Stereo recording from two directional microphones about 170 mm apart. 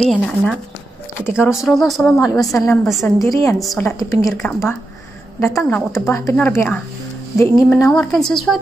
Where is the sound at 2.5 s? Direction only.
15° left (ahead or behind).